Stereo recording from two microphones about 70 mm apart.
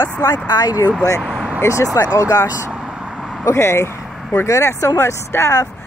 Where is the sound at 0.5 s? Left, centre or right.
Left.